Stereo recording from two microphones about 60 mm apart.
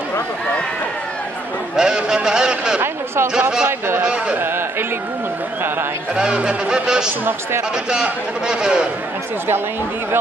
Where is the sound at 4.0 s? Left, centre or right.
Centre.